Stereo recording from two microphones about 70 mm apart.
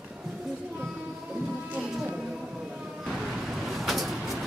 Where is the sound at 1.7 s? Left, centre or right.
Centre.